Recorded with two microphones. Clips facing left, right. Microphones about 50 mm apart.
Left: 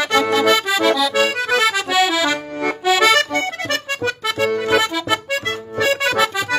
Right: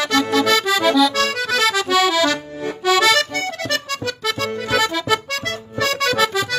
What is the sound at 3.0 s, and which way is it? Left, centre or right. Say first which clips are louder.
Accordion: left 2 dB; left.